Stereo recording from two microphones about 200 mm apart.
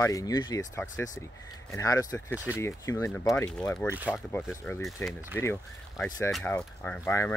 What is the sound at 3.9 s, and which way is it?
Speech, 10° right (ahead or behind).